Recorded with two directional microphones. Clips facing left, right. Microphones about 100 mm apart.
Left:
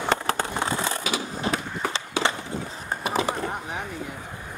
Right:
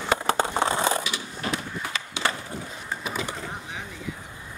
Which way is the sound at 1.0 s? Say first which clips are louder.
Left 4 dB; 45° left (ahead or behind).